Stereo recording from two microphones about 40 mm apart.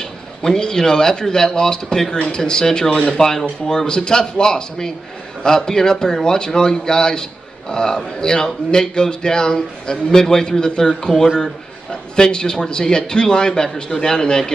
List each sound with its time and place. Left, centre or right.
0.0 s a man's voice: centre